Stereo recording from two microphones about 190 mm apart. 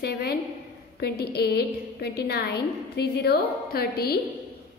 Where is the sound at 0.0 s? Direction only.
55° left (ahead or behind).